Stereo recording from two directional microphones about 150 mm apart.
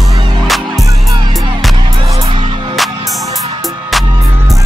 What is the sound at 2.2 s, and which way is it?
Music, 30° right (ahead or behind).